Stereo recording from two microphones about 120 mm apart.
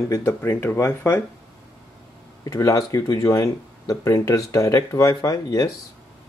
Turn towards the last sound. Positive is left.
turn(degrees=30)  # may be behind; listen again after turning